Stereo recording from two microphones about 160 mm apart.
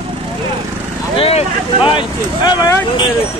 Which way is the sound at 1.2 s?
40° left (ahead or behind).